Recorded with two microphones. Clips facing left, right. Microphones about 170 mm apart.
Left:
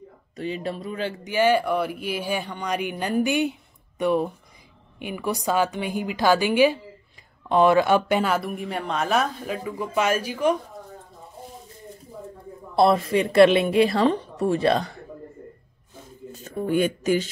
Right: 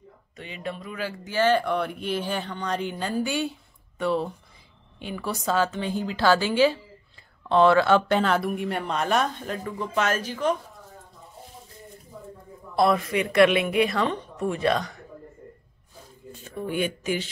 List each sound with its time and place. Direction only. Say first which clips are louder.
0.4 s speech: left 6 dB; 35° left (ahead or behind); by 10.5 s 10° left (ahead or behind)
12.7 s a woman's voice: left 3 dB; 30° left (ahead or behind)
16.4 s speech: left 5 dB; 40° left (ahead or behind)